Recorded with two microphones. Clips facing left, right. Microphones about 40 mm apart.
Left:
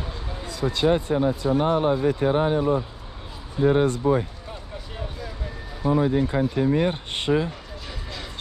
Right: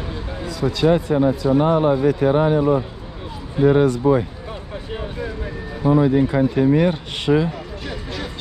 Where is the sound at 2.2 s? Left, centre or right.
Right.